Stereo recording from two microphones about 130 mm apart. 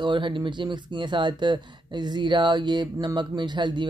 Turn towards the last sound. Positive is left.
turn(degrees=-35)  # may be behind; listen again after turning